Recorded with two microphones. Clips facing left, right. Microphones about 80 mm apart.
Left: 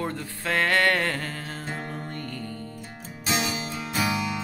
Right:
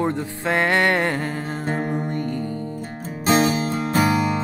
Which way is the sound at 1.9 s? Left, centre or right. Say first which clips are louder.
Right 10 dB; right.